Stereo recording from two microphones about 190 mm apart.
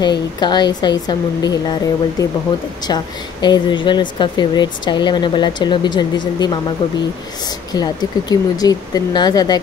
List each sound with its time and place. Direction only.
0.0 s speech: 25° left (ahead or behind)